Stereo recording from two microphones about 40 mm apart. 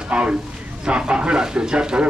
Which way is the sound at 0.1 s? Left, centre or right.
Centre.